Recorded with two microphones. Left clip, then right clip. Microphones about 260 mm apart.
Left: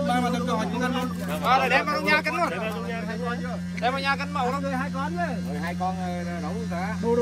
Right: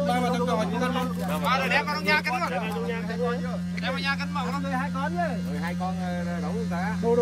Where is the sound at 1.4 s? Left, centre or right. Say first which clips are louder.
Left 4 dB; centre.